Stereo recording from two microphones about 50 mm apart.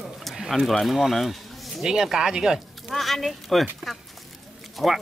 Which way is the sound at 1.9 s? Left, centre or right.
Centre.